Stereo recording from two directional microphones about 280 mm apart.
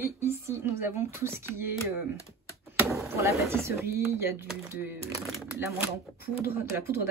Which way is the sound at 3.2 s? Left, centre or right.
Centre.